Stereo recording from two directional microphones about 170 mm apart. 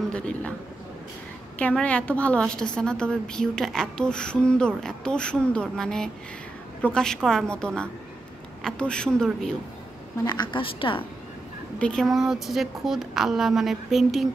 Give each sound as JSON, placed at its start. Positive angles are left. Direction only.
{"t": 0.1, "sound": "a man's voice", "side_deg": 5}
{"t": 1.6, "sound": "a woman's voice", "side_deg": 5}
{"t": 10.2, "sound": "a woman's voice", "side_deg": 25}
{"t": 11.8, "sound": "a woman's voice", "side_deg": 5}